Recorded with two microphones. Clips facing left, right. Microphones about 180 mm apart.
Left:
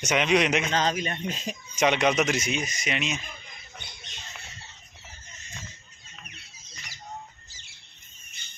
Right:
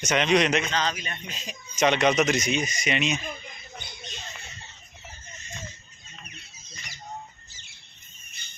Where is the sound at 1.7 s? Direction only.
10° left (ahead or behind).